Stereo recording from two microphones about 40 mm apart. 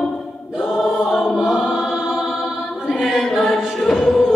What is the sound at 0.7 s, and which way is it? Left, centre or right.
Music, centre.